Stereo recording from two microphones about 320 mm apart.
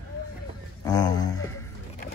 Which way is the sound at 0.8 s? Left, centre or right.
Centre.